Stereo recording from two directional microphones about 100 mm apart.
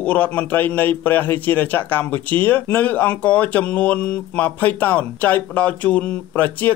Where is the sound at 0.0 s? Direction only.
15° left (ahead or behind).